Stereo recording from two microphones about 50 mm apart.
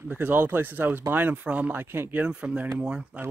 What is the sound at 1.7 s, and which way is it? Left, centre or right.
Speech, right.